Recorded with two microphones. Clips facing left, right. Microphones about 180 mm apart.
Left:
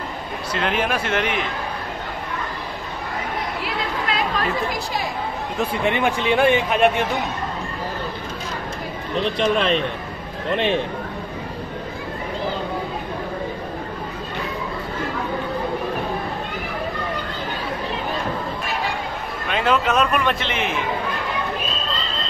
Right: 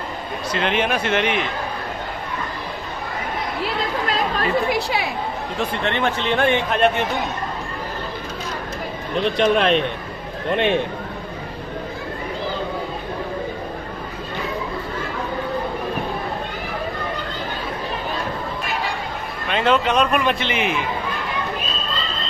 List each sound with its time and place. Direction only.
0.5 s speech: 5° left (ahead or behind)
4.6 s a woman's voice: 70° right (ahead or behind)
5.6 s speech: 10° left (ahead or behind)
9.2 s a man's voice: centre (ahead or behind)
19.5 s a man's voice: 5° left (ahead or behind)